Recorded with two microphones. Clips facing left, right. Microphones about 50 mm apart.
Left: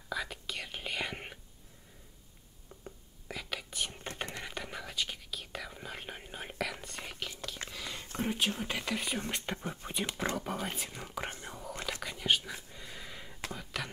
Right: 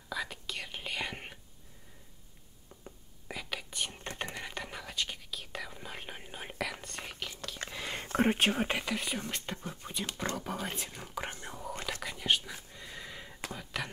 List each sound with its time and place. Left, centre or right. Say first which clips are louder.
0.1 s whispering: even; centre
2.7 s whispering: left 2 dB; centre
7.8 s whispering: right 8 dB; right
8.8 s speech: even; centre
9.3 s speech: left 2 dB; centre
11.4 s whispering: right 1 dB; centre